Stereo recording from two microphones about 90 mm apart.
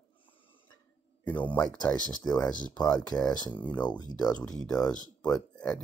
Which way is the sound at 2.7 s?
50° left (ahead or behind).